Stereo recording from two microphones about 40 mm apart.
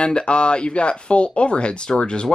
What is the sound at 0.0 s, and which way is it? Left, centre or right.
Speech, left.